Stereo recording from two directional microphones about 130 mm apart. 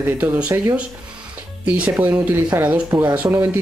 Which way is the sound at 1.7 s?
10° right (ahead or behind).